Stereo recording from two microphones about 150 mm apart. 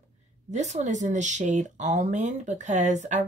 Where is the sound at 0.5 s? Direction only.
50° right (ahead or behind).